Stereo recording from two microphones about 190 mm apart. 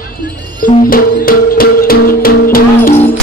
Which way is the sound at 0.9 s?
50° left (ahead or behind).